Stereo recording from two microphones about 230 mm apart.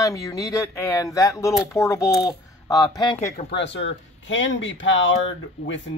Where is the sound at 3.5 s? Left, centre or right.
Left.